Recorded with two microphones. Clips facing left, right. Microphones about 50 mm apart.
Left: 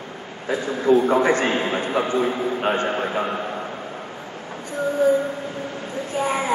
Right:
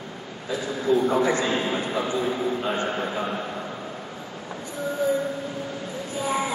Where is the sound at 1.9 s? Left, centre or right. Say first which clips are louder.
Left 6 dB; left.